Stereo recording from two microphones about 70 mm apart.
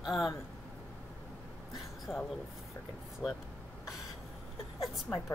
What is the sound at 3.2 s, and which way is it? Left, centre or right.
Speech, centre.